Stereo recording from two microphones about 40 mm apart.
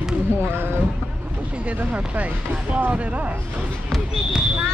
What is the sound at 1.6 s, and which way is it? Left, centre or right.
Speech, right.